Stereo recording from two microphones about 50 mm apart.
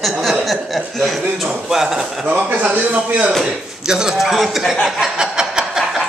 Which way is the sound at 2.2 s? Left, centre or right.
Right.